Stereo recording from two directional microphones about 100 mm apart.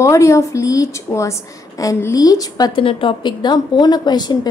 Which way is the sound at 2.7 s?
60° left (ahead or behind).